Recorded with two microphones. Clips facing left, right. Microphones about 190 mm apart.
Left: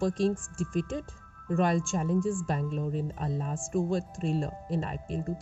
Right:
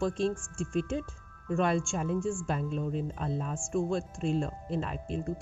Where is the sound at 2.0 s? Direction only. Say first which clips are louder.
Left 2 dB; 35° left (ahead or behind).